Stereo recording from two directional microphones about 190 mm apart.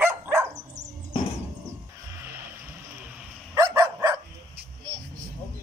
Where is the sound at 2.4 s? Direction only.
10° right (ahead or behind).